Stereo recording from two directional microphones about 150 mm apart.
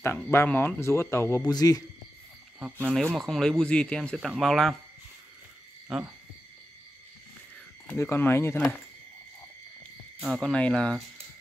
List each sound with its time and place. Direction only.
0.3 s a man's voice: 15° left (ahead or behind)
2.6 s speech: 5° right (ahead or behind)
5.9 s speech: 5° right (ahead or behind)
7.8 s speech: 15° left (ahead or behind)
10.2 s speech: centre (ahead or behind)